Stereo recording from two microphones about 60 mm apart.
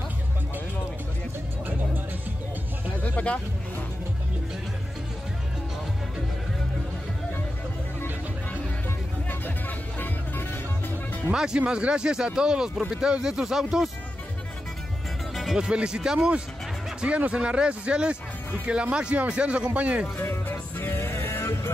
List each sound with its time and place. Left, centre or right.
3.0 s a sound: left
11.3 s speech: centre
15.3 s speech: centre; by 20.1 s right
20.2 s music: left